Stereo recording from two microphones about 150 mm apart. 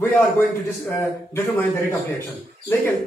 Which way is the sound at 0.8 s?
20° left (ahead or behind).